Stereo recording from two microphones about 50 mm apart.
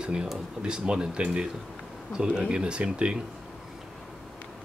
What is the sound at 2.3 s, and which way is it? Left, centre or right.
Speech, centre.